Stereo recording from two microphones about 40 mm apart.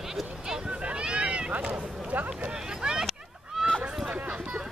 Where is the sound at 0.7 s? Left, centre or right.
Right; by 3.6 s centre.